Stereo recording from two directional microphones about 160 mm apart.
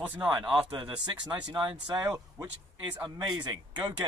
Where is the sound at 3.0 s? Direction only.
25° right (ahead or behind).